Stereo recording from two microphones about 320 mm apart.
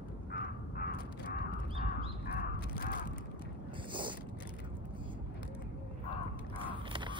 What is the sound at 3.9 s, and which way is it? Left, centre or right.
Boat, centre.